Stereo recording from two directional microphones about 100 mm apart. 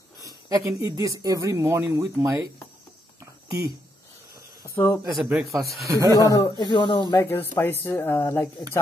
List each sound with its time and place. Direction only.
0.2 s a sound: 35° right (ahead or behind)
0.8 s speech: 35° right (ahead or behind)
3.4 s speech: 35° right (ahead or behind)
4.6 s speech: 25° left (ahead or behind)
5.1 s speech: 5° right (ahead or behind)
5.9 s speech: 30° right (ahead or behind)
6.6 s speech: 50° left (ahead or behind)
7.2 s speech: 25° left (ahead or behind)